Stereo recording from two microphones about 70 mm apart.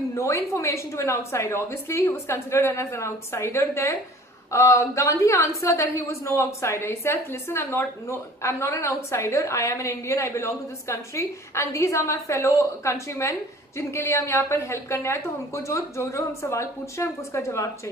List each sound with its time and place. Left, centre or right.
0.1 s a woman's voice: left